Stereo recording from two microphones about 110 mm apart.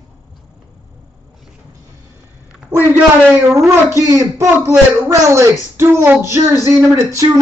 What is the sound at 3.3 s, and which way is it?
A man's voice, 25° right (ahead or behind).